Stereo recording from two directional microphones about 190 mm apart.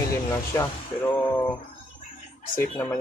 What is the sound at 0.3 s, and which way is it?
Speech, 15° left (ahead or behind).